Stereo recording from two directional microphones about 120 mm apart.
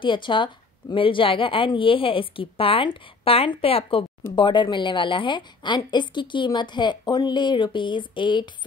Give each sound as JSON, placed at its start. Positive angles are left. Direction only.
{"t": 0.0, "sound": "a woman's voice", "side_deg": 45}